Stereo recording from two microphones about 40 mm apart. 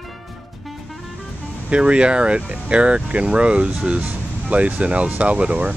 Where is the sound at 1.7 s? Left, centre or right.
Right.